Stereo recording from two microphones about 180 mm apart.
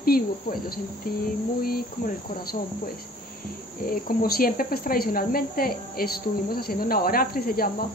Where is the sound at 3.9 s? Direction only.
55° left (ahead or behind).